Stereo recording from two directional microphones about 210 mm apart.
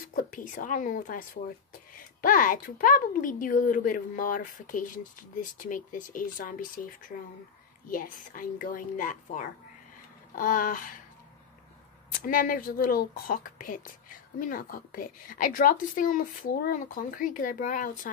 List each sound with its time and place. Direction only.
0.0 s a woman's voice: 40° left (ahead or behind)
12.2 s a woman's voice: 40° left (ahead or behind)